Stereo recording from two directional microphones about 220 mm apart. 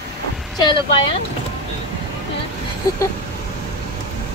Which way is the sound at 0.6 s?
20° left (ahead or behind).